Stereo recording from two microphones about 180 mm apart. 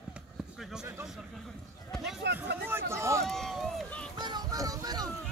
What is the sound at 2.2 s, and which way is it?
Speech, 70° right (ahead or behind).